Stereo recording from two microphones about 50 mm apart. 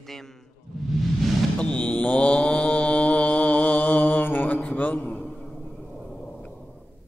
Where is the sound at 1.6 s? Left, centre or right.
Left.